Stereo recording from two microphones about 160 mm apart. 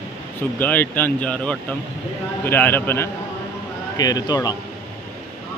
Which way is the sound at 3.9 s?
25° left (ahead or behind).